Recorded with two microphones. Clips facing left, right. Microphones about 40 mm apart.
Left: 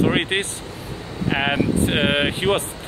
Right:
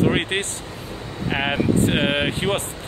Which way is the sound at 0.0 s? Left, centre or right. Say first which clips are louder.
Left 1 dB; centre.